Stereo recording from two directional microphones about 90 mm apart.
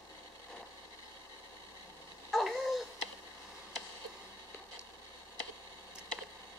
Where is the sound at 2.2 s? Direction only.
Centre (ahead or behind).